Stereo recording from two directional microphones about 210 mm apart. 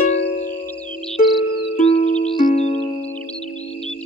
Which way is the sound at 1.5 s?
55° left (ahead or behind).